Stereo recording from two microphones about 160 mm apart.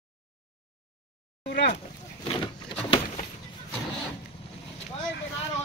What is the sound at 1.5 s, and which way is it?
Speech, 75° left (ahead or behind).